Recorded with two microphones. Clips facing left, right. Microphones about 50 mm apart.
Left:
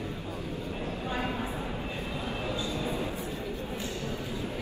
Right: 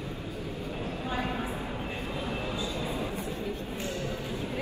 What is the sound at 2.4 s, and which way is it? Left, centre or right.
Train, left.